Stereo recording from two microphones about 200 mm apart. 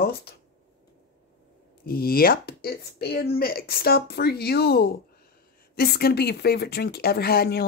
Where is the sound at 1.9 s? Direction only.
50° left (ahead or behind).